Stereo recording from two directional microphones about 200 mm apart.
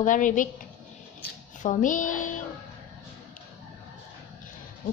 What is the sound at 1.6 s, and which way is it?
Speech, 40° left (ahead or behind).